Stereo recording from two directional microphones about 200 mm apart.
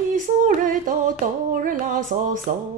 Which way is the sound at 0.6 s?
40° right (ahead or behind).